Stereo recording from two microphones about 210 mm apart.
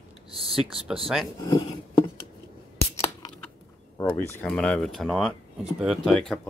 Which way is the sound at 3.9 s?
10° left (ahead or behind).